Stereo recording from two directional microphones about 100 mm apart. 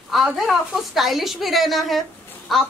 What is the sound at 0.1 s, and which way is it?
A woman's voice, centre (ahead or behind).